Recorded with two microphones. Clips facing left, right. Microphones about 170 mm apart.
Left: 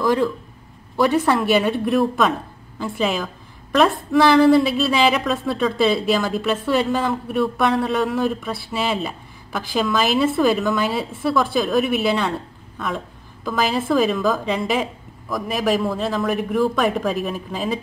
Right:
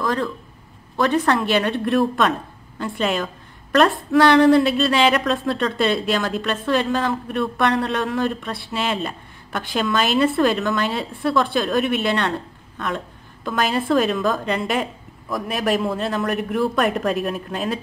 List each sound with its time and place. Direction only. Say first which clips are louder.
0.0 s speech: left 4 dB; 15° left (ahead or behind)
0.9 s a woman's voice: left 1 dB; 5° left (ahead or behind)